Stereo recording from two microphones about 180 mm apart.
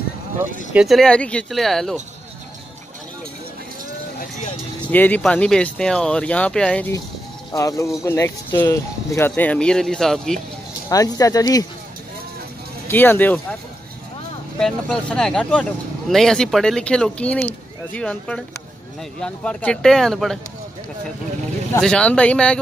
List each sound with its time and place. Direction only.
0.4 s speech: 5° right (ahead or behind)
4.8 s speech: 10° left (ahead or behind)
7.5 s speech: 20° left (ahead or behind); by 10.4 s 5° left (ahead or behind)
10.9 s speech: 20° left (ahead or behind)
12.8 s speech: 10° left (ahead or behind)
14.6 s speech: 5° left (ahead or behind)
21.7 s speech: 5° left (ahead or behind)